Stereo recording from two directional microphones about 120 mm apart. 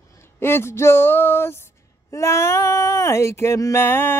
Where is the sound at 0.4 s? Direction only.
20° left (ahead or behind).